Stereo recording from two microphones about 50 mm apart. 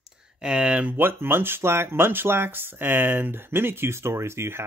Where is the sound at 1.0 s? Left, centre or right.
Right.